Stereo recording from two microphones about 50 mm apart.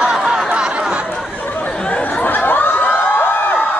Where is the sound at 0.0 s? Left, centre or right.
Centre.